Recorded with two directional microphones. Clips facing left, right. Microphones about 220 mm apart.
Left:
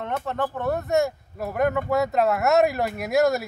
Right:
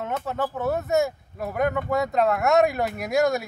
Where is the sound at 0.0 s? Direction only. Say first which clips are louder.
Even; centre (ahead or behind).